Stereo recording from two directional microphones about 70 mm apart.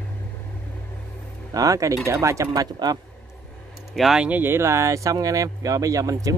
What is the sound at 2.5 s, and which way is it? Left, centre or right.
Speech, right.